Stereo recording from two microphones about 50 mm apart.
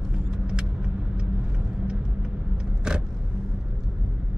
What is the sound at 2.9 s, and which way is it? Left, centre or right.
Vehicle, centre.